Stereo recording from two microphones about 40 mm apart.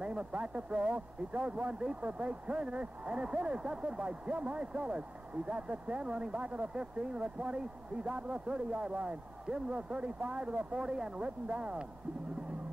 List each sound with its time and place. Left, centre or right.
0.0 s speech: right
4.3 s speech: right
6.7 s speech: right
11.2 s speech: right